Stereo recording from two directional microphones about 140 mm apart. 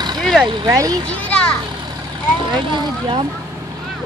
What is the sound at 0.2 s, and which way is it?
Vehicle, 5° left (ahead or behind).